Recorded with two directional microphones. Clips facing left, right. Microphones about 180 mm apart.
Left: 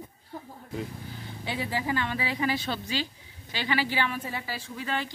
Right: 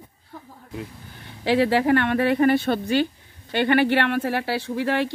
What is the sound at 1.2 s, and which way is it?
Speech, 70° right (ahead or behind).